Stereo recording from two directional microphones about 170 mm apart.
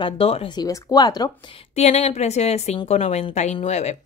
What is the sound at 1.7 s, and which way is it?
A woman's voice, 40° left (ahead or behind).